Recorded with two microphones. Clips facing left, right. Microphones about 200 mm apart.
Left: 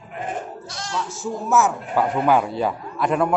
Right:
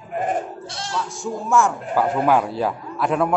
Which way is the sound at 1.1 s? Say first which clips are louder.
Even; 5° left (ahead or behind).